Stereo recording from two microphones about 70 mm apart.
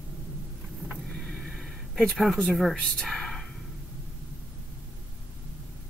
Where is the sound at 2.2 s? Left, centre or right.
Centre.